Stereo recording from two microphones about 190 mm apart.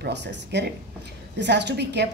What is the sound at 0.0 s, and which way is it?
A woman's voice, 65° right (ahead or behind).